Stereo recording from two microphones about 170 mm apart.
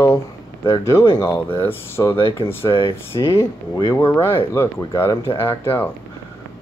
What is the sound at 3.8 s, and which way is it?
Speech, 20° left (ahead or behind).